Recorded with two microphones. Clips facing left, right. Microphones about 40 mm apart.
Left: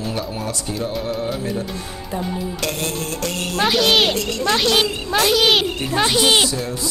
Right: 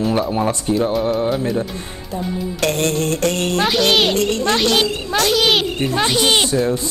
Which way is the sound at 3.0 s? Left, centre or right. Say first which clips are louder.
Right 6 dB; right.